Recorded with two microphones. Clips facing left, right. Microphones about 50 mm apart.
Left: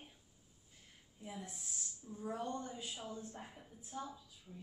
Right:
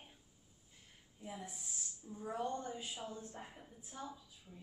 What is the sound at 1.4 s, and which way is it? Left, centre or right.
A woman's voice, centre.